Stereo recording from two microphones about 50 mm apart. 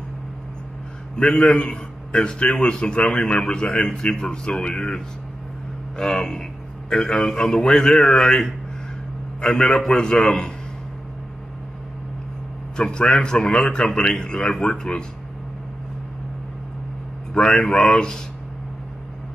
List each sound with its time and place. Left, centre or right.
1.1 s a man's voice: centre
12.7 s a man's voice: centre
17.6 s a man's voice: centre